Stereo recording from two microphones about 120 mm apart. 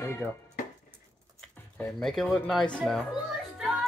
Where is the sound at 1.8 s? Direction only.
5° left (ahead or behind).